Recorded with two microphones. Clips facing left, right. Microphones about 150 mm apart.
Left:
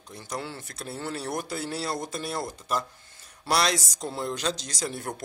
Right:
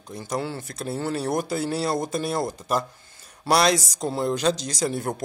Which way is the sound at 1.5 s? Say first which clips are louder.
Right 6 dB; 10° right (ahead or behind).